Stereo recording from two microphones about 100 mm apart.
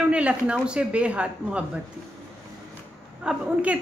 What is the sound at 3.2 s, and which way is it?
Speech, 10° right (ahead or behind).